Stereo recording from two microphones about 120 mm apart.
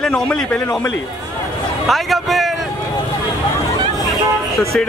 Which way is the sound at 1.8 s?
Centre (ahead or behind).